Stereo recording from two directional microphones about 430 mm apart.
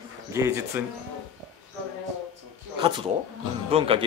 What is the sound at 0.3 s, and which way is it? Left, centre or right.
Speech, centre.